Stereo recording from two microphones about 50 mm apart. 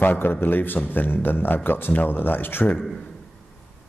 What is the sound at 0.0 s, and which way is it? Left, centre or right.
A man's voice, left.